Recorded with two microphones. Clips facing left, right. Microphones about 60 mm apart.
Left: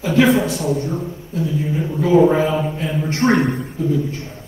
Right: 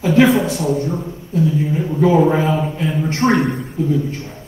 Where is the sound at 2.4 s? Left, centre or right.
Centre.